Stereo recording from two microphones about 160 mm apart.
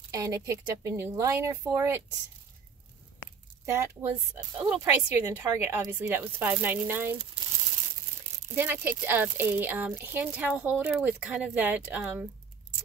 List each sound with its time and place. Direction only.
0.1 s speech: 20° right (ahead or behind)
3.6 s a woman's voice: 15° right (ahead or behind)
8.5 s speech: 15° right (ahead or behind)